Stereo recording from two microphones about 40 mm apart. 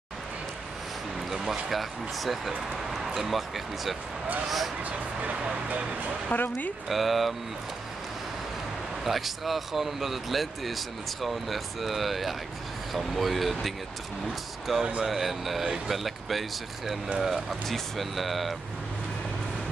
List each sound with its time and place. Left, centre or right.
1.3 s speech: centre
4.8 s speech: right
6.3 s speech: left
6.9 s speech: centre
9.0 s speech: centre